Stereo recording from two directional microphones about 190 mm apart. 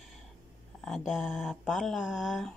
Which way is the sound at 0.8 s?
Centre (ahead or behind).